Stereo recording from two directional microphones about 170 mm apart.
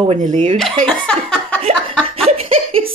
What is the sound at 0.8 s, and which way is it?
Chuckle, 5° left (ahead or behind).